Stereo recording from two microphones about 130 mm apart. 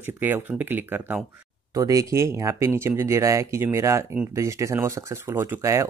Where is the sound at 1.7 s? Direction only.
25° right (ahead or behind).